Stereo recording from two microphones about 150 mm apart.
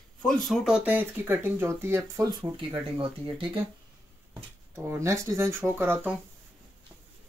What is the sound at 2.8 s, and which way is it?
Speech, 35° right (ahead or behind).